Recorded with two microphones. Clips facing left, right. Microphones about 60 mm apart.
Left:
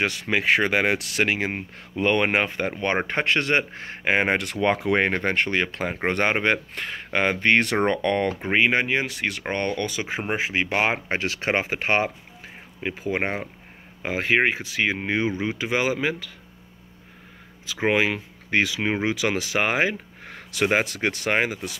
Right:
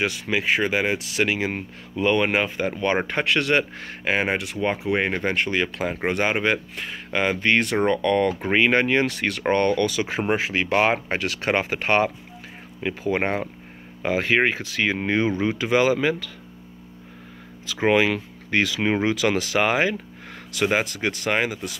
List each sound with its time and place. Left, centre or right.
0.0 s speech: left
1.2 s speech: left
4.3 s speech: left
7.6 s speech: left
8.4 s speech: centre
9.5 s speech: left
17.7 s speech: centre
18.8 s speech: centre
19.1 s speech: left